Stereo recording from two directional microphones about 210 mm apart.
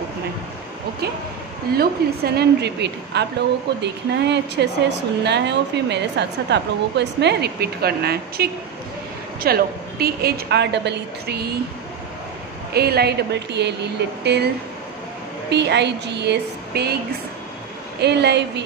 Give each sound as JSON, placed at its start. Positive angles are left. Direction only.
{"t": 1.8, "sound": "a woman's voice", "side_deg": -50}
{"t": 12.7, "sound": "a woman's voice", "side_deg": -50}
{"t": 15.5, "sound": "a woman's voice", "side_deg": -55}
{"t": 18.0, "sound": "a woman's voice", "side_deg": -55}